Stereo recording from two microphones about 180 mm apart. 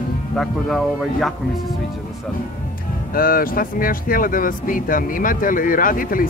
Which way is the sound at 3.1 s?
50° left (ahead or behind).